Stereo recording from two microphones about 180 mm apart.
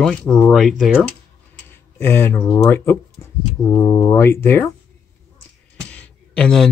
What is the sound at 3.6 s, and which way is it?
Speech, 20° left (ahead or behind).